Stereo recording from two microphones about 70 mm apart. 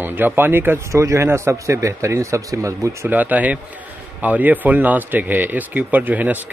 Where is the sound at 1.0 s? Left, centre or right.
Right.